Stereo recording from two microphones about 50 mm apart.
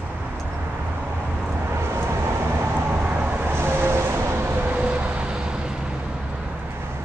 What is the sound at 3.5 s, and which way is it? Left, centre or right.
Vehicle, right.